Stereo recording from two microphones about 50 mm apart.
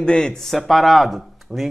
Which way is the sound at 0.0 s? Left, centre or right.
Centre.